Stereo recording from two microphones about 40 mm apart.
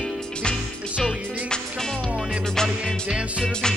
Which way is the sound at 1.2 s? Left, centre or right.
Right.